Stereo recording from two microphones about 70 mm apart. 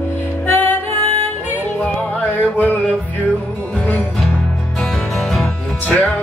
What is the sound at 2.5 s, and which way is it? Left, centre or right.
Music, left.